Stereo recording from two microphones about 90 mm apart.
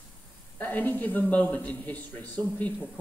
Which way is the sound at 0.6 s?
20° left (ahead or behind).